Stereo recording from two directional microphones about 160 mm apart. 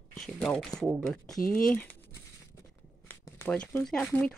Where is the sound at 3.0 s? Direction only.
15° left (ahead or behind).